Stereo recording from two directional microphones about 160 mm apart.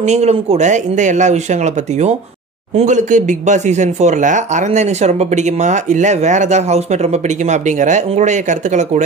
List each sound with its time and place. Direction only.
0.0 s speech: 45° right (ahead or behind)